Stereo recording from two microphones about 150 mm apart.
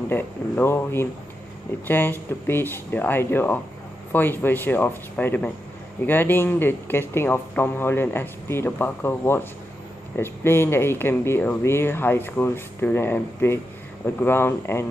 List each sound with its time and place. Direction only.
0.1 s speech: 15° left (ahead or behind)